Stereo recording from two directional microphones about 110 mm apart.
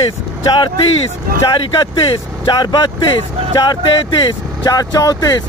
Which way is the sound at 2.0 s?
50° left (ahead or behind).